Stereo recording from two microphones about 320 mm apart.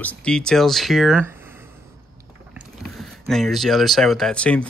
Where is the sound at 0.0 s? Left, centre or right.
Centre.